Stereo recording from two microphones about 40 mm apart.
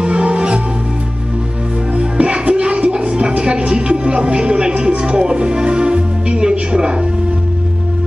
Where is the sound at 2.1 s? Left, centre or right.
Right.